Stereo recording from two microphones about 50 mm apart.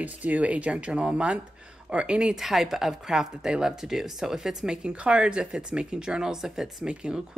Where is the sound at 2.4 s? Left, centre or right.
Centre.